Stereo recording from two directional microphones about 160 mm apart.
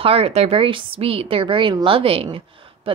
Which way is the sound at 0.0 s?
35° right (ahead or behind).